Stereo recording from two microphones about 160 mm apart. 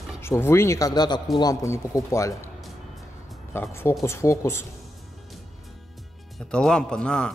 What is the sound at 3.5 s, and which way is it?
Speech, 15° left (ahead or behind).